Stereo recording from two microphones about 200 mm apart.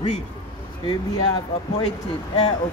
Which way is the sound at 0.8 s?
20° left (ahead or behind).